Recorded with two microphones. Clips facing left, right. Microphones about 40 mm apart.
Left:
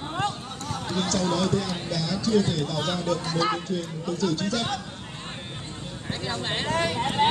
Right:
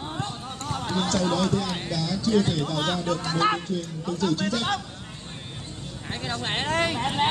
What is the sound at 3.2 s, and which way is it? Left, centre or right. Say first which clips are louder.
Speech: right 2 dB; right.